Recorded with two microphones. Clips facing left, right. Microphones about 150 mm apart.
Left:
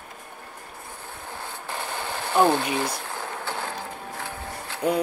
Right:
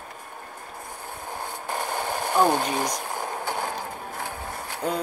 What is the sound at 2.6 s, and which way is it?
Speech, 45° right (ahead or behind).